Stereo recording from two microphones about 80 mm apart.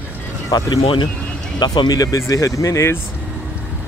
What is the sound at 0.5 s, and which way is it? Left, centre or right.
Speech, left.